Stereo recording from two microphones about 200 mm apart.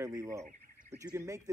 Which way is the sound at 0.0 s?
15° right (ahead or behind).